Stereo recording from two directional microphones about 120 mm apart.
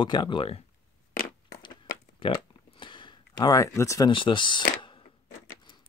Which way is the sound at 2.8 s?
45° left (ahead or behind).